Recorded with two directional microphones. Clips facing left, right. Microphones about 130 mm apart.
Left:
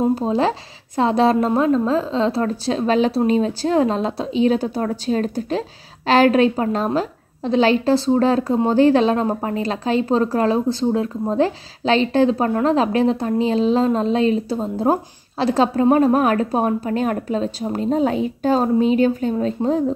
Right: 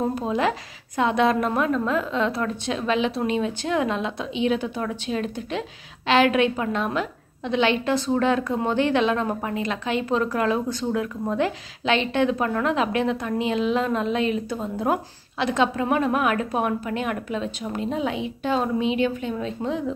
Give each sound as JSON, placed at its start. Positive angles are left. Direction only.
{"t": 0.1, "sound": "a woman's voice", "side_deg": 30}